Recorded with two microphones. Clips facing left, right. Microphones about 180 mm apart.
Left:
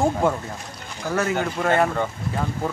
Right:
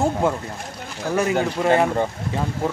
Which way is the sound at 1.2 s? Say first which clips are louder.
Right 3 dB; 15° right (ahead or behind).